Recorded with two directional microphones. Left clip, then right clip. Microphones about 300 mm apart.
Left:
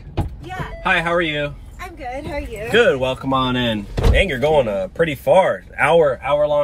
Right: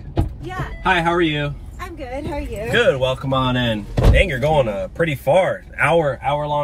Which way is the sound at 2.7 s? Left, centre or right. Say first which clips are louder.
Left 1 dB; centre.